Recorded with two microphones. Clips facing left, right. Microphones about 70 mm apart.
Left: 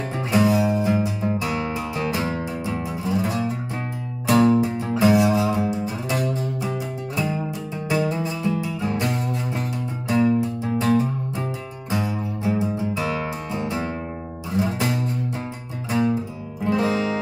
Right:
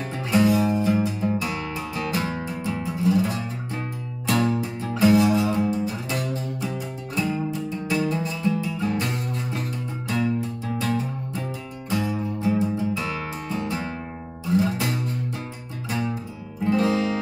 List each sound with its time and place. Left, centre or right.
0.3 s music: centre
7.2 s music: left
16.6 s music: left